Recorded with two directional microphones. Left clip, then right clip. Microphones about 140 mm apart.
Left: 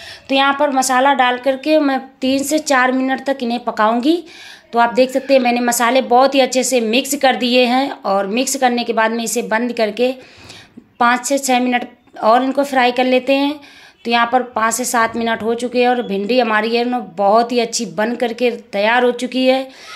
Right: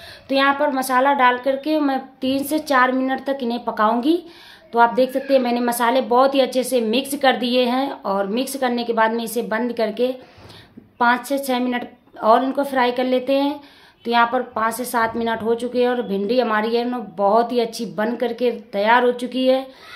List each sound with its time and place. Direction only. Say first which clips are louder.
0.3 s a woman's voice: left 3 dB; 20° left (ahead or behind)